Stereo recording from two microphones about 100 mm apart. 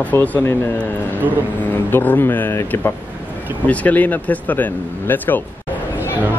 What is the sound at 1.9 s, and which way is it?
Speech, 20° left (ahead or behind).